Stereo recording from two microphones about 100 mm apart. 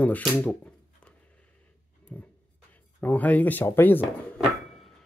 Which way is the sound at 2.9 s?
15° left (ahead or behind).